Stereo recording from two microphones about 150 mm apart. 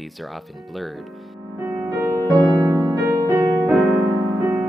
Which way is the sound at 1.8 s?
15° right (ahead or behind).